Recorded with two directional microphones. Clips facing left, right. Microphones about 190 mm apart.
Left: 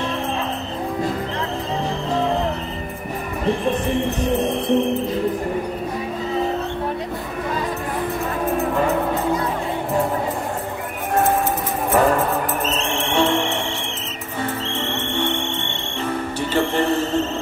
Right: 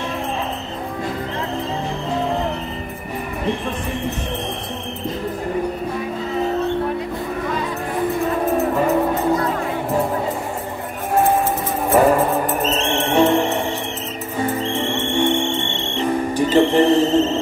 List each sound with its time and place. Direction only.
11.9 s music: 10° right (ahead or behind)
12.6 s music: 35° right (ahead or behind)
14.4 s music: 10° right (ahead or behind)